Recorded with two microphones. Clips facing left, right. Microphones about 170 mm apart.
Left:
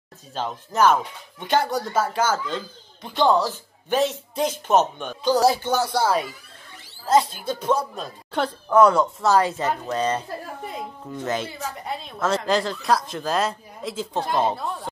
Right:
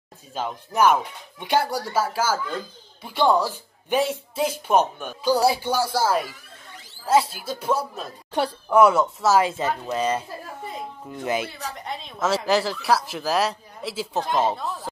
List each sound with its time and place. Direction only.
0.3 s speech: 10° right (ahead or behind)
11.8 s speech: 5° left (ahead or behind)